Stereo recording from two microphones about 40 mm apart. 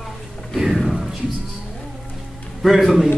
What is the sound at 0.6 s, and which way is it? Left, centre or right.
Music, centre.